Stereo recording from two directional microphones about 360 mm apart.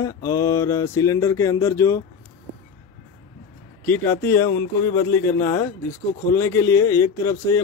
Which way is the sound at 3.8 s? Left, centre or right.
Centre.